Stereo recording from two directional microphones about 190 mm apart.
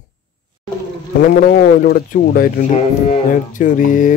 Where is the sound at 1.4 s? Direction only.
55° left (ahead or behind).